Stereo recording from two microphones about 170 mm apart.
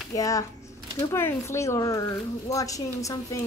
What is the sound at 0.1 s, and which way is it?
A woman's voice, 20° left (ahead or behind).